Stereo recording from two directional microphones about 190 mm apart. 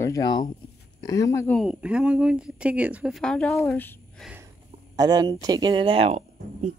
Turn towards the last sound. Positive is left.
turn(degrees=-35)  # may be behind; listen again after turning